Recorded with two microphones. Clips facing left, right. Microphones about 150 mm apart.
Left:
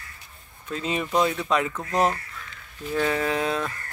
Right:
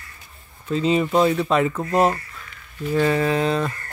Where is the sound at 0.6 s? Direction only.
Centre (ahead or behind).